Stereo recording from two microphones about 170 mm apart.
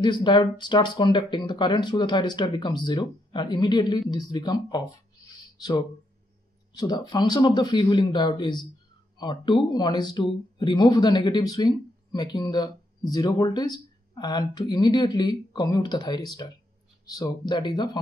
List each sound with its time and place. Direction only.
0.0 s speech: 25° left (ahead or behind)